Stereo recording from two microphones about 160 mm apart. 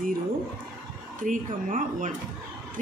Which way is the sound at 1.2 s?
55° right (ahead or behind).